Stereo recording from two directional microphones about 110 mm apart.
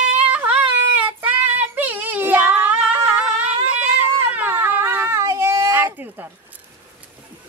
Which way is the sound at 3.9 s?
15° right (ahead or behind).